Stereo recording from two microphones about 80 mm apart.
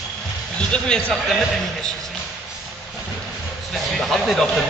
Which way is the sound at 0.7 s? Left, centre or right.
Centre.